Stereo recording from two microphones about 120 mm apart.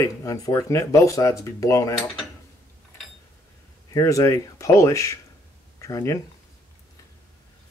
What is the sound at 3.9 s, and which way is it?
Speech, 25° left (ahead or behind).